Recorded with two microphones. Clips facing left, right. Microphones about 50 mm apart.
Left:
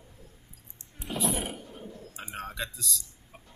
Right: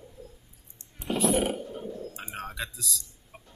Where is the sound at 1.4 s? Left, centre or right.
Right.